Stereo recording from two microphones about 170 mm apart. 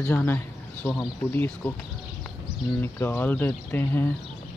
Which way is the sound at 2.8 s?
15° left (ahead or behind).